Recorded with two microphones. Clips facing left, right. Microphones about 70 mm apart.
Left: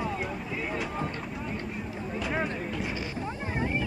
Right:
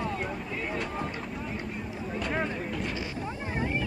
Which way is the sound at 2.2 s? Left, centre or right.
Centre.